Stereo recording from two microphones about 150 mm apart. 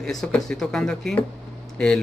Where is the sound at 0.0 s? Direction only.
5° left (ahead or behind).